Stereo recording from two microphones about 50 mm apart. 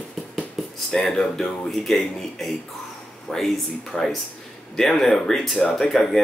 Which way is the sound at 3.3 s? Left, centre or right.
Centre.